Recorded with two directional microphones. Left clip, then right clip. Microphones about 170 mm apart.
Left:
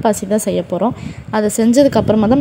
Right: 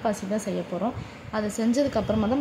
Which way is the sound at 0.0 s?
55° left (ahead or behind).